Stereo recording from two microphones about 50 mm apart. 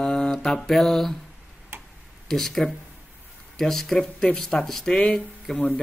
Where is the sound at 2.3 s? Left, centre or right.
Centre.